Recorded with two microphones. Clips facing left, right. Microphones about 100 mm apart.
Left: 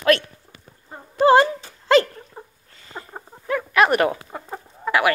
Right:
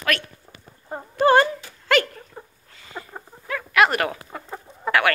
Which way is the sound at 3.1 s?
25° left (ahead or behind).